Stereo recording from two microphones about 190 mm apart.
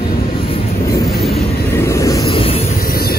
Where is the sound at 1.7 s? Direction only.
15° left (ahead or behind).